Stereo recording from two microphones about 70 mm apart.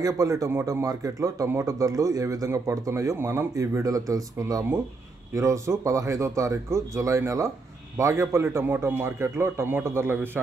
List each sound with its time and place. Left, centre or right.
0.0 s speech: right
3.2 s a man's voice: right
3.5 s speech: right
5.3 s a man's voice: right